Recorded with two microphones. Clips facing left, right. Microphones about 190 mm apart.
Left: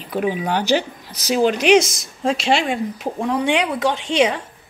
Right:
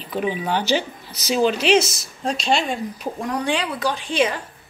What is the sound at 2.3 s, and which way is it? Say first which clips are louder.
Speech: left 2 dB; 75° left (ahead or behind).